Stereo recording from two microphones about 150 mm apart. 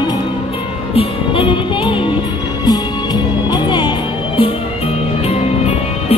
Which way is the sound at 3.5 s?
30° left (ahead or behind).